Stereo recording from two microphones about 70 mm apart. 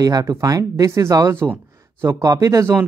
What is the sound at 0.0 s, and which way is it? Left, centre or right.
Speech, right.